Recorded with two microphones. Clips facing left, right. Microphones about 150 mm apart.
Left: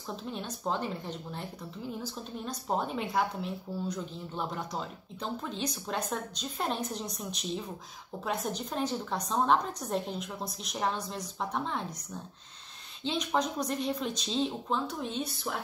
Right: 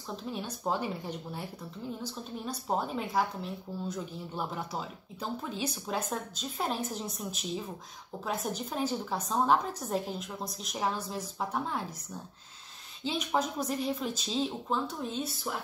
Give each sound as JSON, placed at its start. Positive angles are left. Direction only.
{"t": 0.1, "sound": "speech", "side_deg": -5}